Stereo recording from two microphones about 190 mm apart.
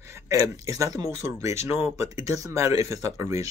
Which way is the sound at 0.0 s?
15° right (ahead or behind).